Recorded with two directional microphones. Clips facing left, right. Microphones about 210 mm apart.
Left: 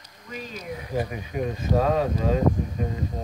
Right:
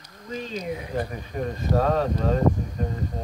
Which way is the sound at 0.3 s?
25° right (ahead or behind).